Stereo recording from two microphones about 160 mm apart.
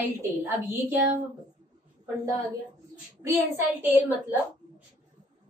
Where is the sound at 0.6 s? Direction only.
10° right (ahead or behind).